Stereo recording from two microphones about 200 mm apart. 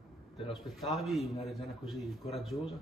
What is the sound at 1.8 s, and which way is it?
Speech, centre (ahead or behind).